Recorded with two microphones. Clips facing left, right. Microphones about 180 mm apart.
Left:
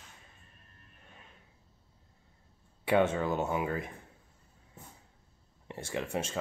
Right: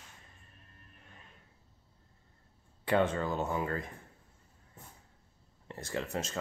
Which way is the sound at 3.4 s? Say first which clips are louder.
Left 2 dB; 10° left (ahead or behind).